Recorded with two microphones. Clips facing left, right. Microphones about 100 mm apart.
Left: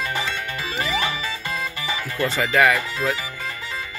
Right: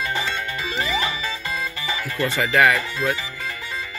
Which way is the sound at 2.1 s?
20° left (ahead or behind).